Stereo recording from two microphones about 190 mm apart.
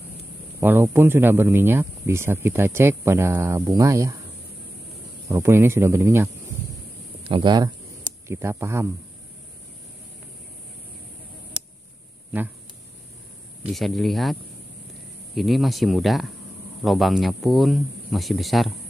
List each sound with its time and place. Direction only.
0.6 s speech: 10° right (ahead or behind)
5.3 s speech: 15° right (ahead or behind)
7.2 s speech: 25° right (ahead or behind)
13.7 s speech: centre (ahead or behind)
15.3 s speech: centre (ahead or behind)